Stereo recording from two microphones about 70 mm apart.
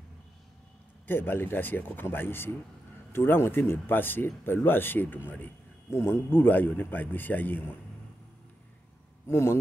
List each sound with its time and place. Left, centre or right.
1.0 s a man's voice: left
5.9 s a man's voice: left
9.3 s speech: left